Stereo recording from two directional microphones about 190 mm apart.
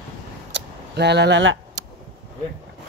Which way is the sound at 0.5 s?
65° right (ahead or behind).